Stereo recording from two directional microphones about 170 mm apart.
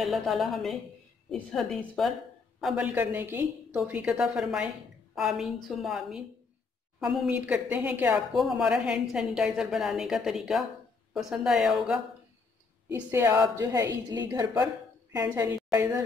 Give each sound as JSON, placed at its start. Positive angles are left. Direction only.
{"t": 0.0, "sound": "a woman's voice", "side_deg": 0}
{"t": 12.9, "sound": "a woman's voice", "side_deg": -15}